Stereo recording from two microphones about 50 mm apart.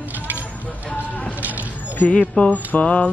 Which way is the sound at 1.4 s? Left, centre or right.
Right.